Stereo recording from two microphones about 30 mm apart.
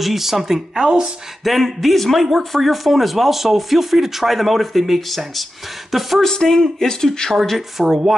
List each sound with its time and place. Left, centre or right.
0.0 s speech: centre
0.8 s speech: right
1.4 s speech: centre
6.2 s speech: centre
7.3 s speech: centre